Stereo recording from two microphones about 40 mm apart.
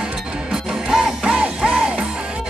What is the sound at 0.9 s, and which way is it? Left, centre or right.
Music, centre.